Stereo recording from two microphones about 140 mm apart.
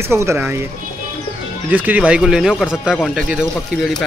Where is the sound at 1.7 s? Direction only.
10° right (ahead or behind).